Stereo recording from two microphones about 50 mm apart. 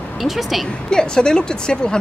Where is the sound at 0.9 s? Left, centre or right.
Centre.